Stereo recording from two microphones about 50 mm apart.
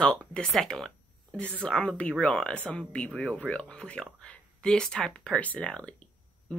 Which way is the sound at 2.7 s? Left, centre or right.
Left.